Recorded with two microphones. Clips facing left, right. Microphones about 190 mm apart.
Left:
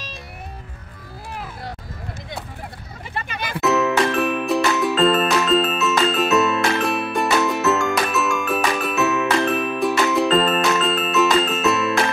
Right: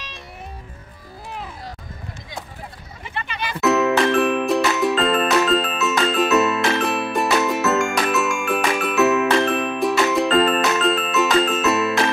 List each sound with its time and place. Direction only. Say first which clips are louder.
3.2 s music: even; 45° left (ahead or behind)
3.5 s music: right 1 dB; centre (ahead or behind)